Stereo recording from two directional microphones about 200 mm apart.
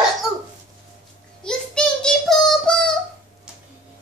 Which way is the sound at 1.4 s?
5° left (ahead or behind).